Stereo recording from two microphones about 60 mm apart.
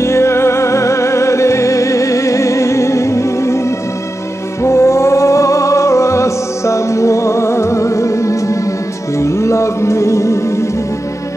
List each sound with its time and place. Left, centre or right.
0.0 s music: left